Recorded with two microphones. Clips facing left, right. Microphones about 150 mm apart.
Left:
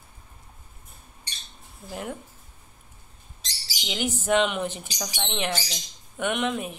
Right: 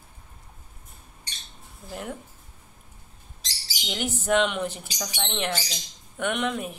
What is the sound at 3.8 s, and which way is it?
Speech, centre (ahead or behind).